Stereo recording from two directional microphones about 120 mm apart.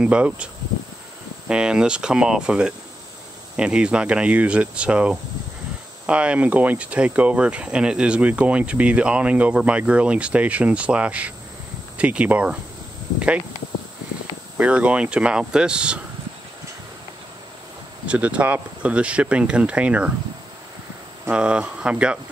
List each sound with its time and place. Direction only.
0.0 s speech: 10° right (ahead or behind)
1.5 s speech: 5° right (ahead or behind)
14.6 s speech: 10° right (ahead or behind)
18.0 s speech: 10° right (ahead or behind)
21.3 s speech: 10° right (ahead or behind)